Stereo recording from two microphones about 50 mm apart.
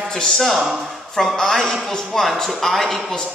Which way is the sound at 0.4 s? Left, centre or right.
Centre.